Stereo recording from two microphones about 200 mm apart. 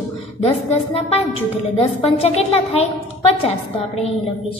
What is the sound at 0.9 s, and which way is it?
A woman's voice, 30° left (ahead or behind).